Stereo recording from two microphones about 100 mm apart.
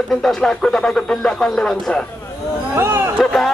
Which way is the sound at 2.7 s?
25° right (ahead or behind).